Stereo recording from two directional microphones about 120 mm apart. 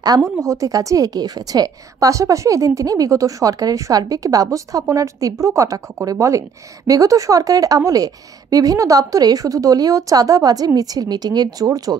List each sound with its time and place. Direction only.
0.4 s a woman's voice: 30° right (ahead or behind)